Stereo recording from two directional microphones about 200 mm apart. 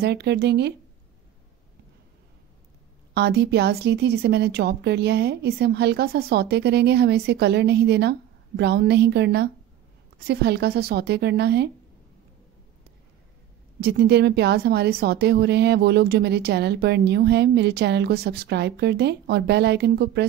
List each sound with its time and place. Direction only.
0.0 s speech: 55° right (ahead or behind)
3.2 s speech: 55° right (ahead or behind)
13.7 s speech: 55° right (ahead or behind)